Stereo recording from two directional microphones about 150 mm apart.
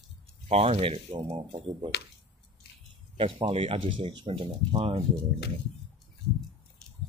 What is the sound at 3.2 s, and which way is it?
Speech, 35° right (ahead or behind).